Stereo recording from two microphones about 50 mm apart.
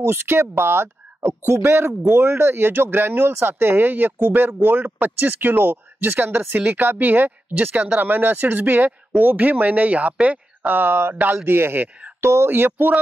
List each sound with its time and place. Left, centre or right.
0.1 s speech: right
1.7 s speech: right
10.2 s a sound: right
10.7 s speech: right
12.2 s speech: right
12.5 s speech: right